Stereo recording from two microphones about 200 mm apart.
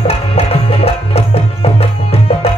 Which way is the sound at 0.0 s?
30° left (ahead or behind).